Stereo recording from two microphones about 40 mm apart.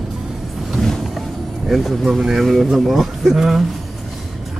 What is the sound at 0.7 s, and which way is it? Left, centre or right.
Vehicle, centre.